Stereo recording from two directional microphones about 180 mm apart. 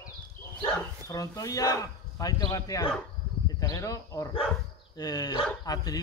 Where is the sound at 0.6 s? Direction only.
20° left (ahead or behind).